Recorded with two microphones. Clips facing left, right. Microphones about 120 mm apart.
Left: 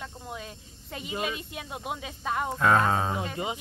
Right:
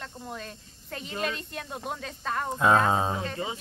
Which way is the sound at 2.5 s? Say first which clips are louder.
Right 1 dB; 15° right (ahead or behind).